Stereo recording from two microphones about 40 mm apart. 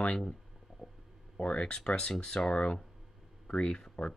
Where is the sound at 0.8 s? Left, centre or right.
Centre.